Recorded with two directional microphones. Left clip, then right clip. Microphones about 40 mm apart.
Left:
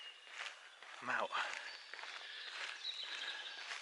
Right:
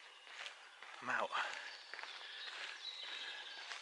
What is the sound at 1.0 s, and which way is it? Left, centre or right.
Speech, centre.